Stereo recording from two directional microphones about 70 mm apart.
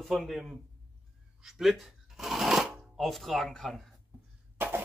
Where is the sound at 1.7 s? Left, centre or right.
Centre.